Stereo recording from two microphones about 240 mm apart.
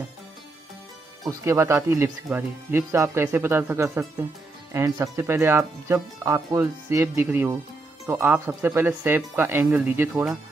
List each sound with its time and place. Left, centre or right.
1.2 s speech: centre